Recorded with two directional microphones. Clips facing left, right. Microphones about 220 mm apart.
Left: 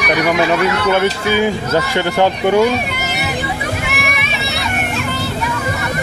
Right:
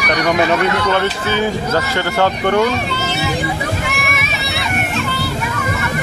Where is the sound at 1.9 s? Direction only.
15° left (ahead or behind).